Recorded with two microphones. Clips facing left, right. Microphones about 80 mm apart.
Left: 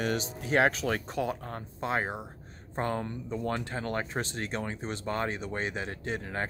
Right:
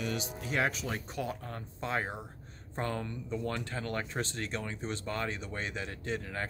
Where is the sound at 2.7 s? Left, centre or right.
Left.